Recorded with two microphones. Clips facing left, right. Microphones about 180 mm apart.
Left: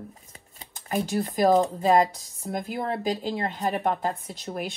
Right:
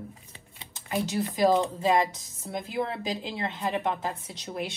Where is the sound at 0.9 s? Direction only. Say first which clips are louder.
Left 2 dB; 45° left (ahead or behind).